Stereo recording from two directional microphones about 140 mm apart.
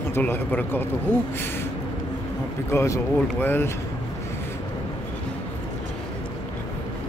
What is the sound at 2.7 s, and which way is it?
Speech, 20° left (ahead or behind).